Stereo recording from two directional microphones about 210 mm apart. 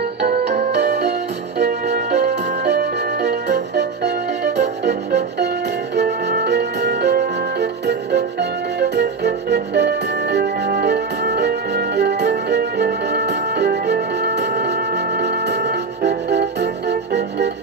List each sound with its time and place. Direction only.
0.2 s music: 50° right (ahead or behind)